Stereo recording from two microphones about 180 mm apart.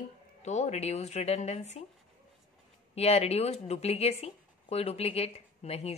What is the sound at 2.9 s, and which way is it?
A woman's voice, 35° left (ahead or behind).